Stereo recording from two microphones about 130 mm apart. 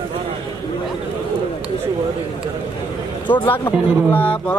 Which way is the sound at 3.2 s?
35° left (ahead or behind).